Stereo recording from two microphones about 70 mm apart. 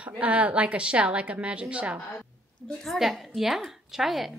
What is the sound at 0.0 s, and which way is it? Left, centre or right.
A woman's voice, right.